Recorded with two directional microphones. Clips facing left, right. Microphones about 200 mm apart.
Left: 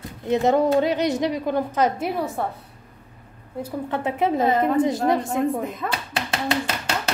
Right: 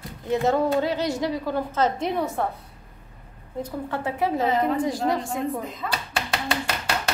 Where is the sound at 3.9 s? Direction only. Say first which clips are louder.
Left 3 dB; 20° left (ahead or behind).